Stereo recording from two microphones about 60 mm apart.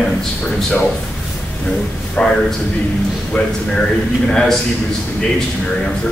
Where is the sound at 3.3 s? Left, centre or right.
Left.